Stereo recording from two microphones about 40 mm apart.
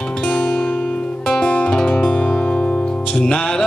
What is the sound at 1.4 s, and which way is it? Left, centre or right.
Music, left.